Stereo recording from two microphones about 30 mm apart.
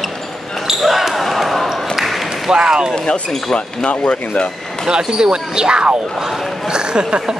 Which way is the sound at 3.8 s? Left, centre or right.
Left.